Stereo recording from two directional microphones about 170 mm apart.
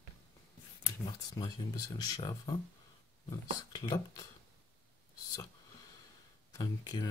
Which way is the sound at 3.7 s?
20° left (ahead or behind).